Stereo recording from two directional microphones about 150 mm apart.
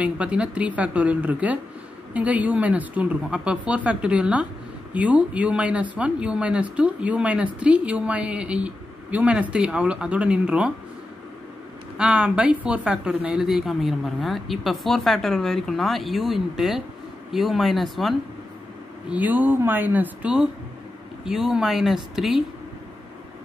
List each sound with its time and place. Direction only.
0.0 s speech: 10° right (ahead or behind)
12.0 s a woman's voice: 5° right (ahead or behind)
19.0 s a woman's voice: 10° right (ahead or behind)